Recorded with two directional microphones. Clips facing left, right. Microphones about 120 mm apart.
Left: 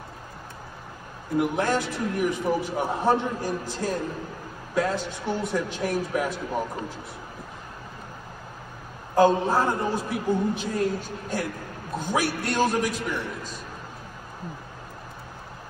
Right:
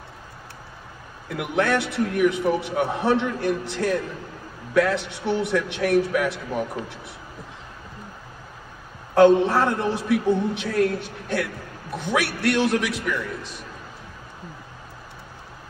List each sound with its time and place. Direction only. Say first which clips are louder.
1.3 s a man's voice: right 1 dB; 70° right (ahead or behind)
9.1 s a man's voice: right 4 dB; 70° right (ahead or behind)